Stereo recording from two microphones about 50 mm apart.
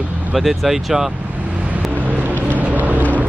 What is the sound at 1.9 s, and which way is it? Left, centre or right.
Vehicle, right.